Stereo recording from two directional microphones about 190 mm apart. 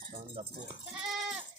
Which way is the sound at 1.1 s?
Centre (ahead or behind).